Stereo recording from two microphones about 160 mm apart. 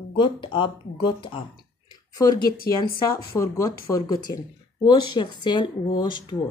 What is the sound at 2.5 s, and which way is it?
Speech, 65° left (ahead or behind).